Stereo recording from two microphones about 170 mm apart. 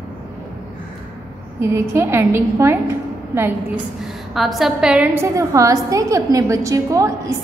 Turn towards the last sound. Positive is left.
turn(degrees=-20)  # may be behind; listen again after turning